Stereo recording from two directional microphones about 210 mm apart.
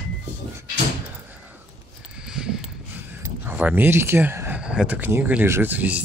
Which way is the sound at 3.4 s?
10° right (ahead or behind).